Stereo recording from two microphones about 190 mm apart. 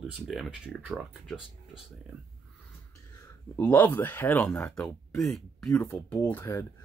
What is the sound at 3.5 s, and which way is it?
Speech, 10° left (ahead or behind).